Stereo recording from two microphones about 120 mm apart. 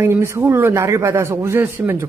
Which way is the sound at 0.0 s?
20° right (ahead or behind).